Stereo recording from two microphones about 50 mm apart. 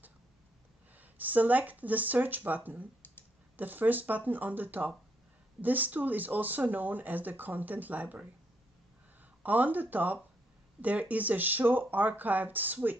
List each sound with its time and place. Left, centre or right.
0.9 s speech: right
9.4 s speech: right